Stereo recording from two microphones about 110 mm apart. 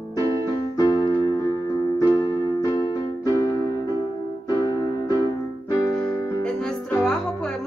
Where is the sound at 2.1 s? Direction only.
35° left (ahead or behind).